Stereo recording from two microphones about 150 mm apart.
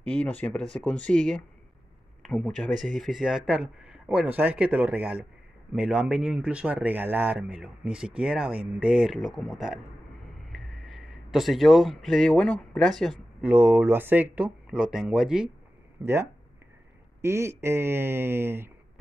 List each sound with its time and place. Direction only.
0.0 s speech: 10° left (ahead or behind)
13.4 s speech: 15° right (ahead or behind)
16.0 s speech: 15° right (ahead or behind)